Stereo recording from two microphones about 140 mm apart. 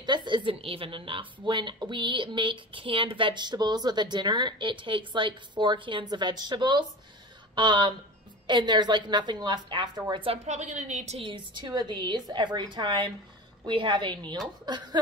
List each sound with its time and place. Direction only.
0.0 s a woman's voice: 35° right (ahead or behind)
10.4 s a woman's voice: 55° right (ahead or behind)
11.2 s a woman's voice: 30° right (ahead or behind)